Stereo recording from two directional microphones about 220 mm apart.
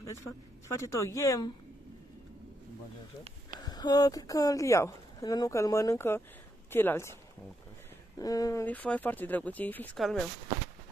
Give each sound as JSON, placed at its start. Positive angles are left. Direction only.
{"t": 0.8, "sound": "speech", "side_deg": 15}
{"t": 3.5, "sound": "speech", "side_deg": 20}
{"t": 8.2, "sound": "speech", "side_deg": 15}